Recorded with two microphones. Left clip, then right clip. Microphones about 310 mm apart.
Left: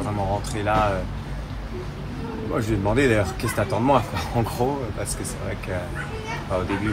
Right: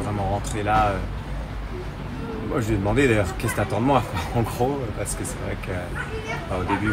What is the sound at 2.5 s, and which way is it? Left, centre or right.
Speech, centre.